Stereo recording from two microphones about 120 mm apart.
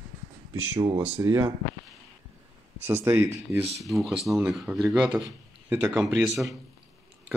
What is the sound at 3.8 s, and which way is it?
Speech, centre (ahead or behind).